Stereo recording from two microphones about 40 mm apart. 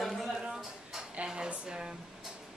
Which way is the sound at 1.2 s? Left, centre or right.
Right.